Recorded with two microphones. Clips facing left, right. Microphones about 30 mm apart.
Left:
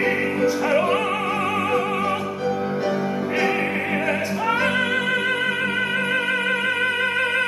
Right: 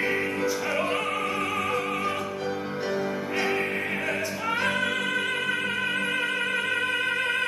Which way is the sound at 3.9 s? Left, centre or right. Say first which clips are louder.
Left 6 dB; centre.